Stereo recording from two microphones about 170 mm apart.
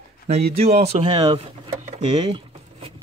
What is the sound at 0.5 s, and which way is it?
Speech, 40° right (ahead or behind).